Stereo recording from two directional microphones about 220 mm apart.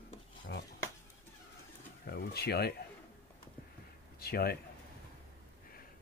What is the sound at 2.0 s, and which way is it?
Speech, 45° left (ahead or behind).